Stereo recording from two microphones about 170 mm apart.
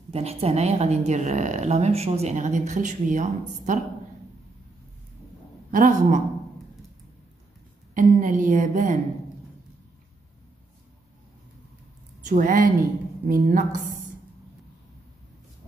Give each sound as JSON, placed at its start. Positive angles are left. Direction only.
{"t": 0.1, "sound": "a woman's voice", "side_deg": -35}
{"t": 5.7, "sound": "a woman's voice", "side_deg": -50}
{"t": 7.9, "sound": "a woman's voice", "side_deg": -50}
{"t": 12.3, "sound": "a woman's voice", "side_deg": -50}